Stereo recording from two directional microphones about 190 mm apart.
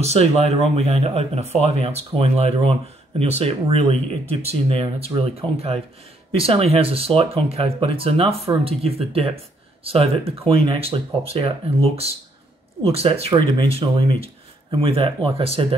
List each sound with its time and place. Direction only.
0.0 s speech: 35° right (ahead or behind)